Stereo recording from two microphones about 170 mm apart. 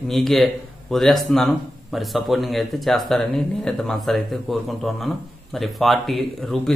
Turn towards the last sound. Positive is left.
turn(degrees=0)  # may be behind; listen again after turning